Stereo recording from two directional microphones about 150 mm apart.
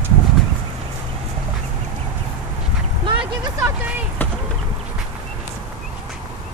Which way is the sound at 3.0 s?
35° right (ahead or behind).